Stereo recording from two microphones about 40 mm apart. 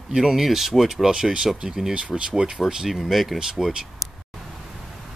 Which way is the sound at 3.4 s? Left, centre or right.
Centre.